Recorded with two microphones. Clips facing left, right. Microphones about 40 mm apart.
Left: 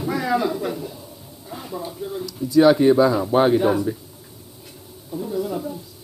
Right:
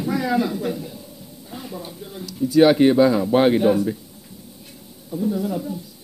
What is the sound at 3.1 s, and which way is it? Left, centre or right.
Speech, centre.